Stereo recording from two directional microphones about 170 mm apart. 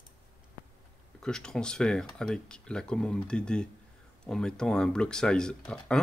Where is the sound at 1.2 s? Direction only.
5° left (ahead or behind).